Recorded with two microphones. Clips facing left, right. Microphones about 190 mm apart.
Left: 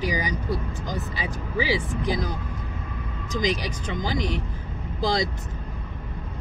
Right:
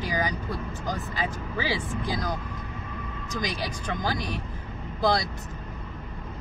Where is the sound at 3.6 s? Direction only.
15° left (ahead or behind).